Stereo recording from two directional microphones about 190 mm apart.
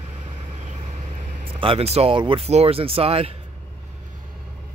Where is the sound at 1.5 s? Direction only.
30° right (ahead or behind).